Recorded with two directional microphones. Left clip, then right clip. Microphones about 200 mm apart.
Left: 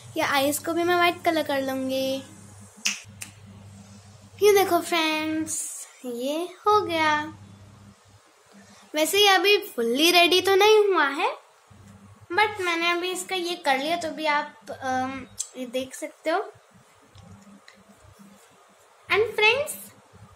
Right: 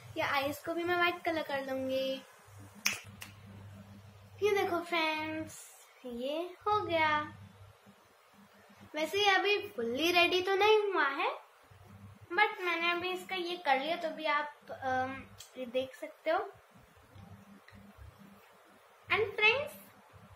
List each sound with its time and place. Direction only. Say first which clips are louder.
0.1 s a woman's voice: left 9 dB; 55° left (ahead or behind)
4.4 s a woman's voice: left 12 dB; 55° left (ahead or behind)
8.9 s a woman's voice: left 10 dB; 55° left (ahead or behind)
12.3 s a woman's voice: left 7 dB; 55° left (ahead or behind)
19.0 s a woman's voice: left 8 dB; 55° left (ahead or behind)